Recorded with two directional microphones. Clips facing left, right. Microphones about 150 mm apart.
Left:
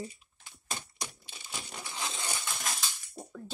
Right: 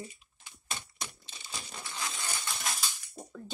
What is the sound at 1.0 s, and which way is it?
Crushing, 10° left (ahead or behind).